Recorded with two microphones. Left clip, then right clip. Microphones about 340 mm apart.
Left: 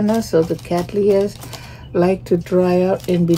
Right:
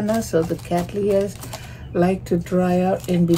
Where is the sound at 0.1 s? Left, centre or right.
Left.